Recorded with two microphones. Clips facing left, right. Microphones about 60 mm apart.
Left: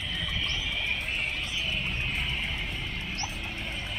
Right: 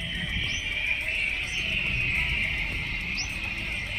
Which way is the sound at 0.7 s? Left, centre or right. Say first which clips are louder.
Right 2 dB; right.